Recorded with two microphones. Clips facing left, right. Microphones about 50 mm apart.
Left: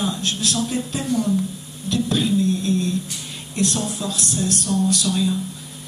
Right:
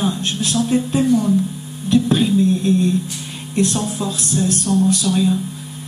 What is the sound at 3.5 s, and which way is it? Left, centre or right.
Speech, right.